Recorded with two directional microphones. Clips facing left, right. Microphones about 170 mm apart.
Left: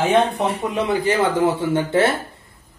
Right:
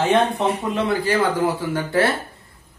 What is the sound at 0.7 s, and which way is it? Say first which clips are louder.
A man's voice: left 1 dB; 15° left (ahead or behind).